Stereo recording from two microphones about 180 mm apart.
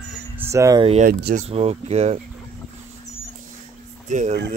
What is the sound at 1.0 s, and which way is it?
Speech, 50° right (ahead or behind).